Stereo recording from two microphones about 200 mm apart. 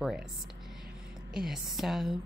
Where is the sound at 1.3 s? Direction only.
Centre (ahead or behind).